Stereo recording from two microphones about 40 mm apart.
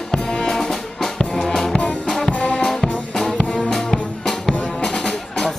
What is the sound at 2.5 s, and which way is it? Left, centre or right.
Music, centre.